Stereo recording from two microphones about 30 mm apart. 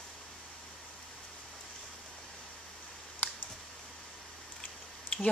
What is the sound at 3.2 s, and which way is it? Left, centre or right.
Computer keyboard, left.